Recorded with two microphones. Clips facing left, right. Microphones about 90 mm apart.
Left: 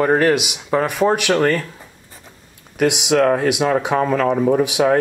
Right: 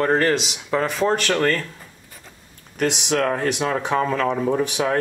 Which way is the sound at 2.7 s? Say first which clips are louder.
Left 5 dB; 10° left (ahead or behind).